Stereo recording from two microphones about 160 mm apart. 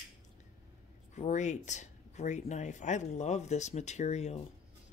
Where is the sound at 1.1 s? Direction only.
45° left (ahead or behind).